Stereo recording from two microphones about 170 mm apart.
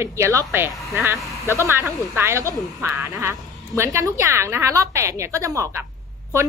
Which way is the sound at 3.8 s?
20° right (ahead or behind).